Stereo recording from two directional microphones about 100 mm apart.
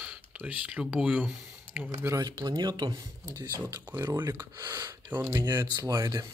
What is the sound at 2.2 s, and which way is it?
Speech, 45° right (ahead or behind).